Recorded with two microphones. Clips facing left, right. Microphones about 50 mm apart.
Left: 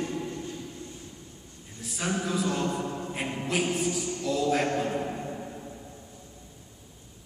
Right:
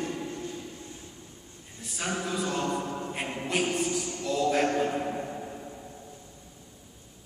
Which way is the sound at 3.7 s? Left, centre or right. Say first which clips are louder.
Even; centre.